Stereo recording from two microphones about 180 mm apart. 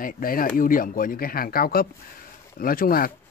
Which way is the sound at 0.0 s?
50° left (ahead or behind).